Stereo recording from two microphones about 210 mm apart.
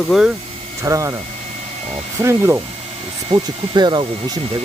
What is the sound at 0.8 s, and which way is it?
Speech, 15° right (ahead or behind).